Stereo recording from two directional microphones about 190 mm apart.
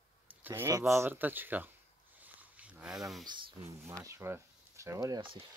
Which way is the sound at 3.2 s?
25° right (ahead or behind).